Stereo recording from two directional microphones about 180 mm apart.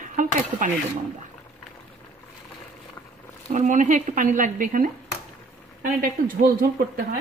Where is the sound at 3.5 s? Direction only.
45° right (ahead or behind).